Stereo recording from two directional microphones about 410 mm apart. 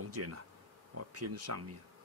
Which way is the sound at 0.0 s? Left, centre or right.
Right.